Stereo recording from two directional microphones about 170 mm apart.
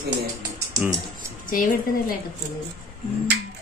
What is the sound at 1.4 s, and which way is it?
Speech, 55° left (ahead or behind).